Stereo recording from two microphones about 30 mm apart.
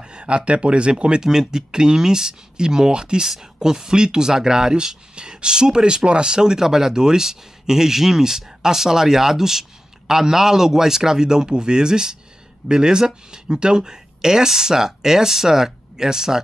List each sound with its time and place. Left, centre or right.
0.0 s a sound: right
0.5 s speech: right
1.2 s speech: right
5.1 s speech: right